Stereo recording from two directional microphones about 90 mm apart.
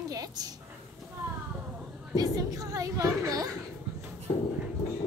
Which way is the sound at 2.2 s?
40° right (ahead or behind).